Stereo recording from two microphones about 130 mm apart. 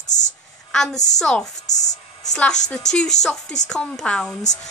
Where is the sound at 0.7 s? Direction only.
5° left (ahead or behind).